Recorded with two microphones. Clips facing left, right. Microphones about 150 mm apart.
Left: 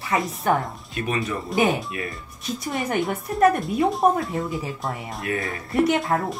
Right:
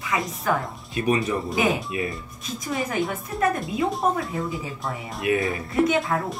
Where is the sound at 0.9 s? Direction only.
20° right (ahead or behind).